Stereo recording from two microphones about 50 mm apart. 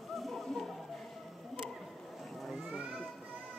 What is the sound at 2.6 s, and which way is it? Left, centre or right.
Children playing, centre.